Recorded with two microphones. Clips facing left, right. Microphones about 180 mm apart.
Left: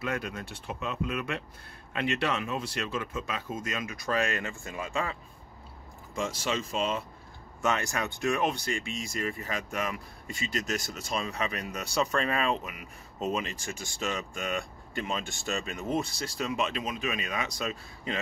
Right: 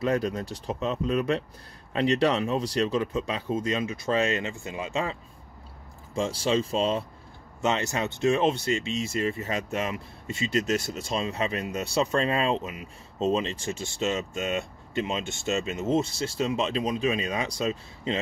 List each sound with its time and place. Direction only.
0.0 s speech: 35° right (ahead or behind)
6.1 s speech: 30° right (ahead or behind)